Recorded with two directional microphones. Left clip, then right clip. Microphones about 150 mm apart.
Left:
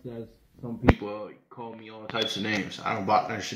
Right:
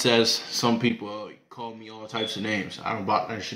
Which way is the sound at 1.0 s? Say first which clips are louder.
Even; 15° right (ahead or behind).